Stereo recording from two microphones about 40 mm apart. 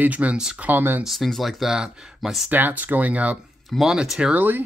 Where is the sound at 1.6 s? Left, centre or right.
Centre.